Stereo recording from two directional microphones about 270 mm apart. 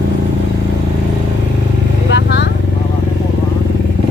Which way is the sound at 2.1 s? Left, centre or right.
Left.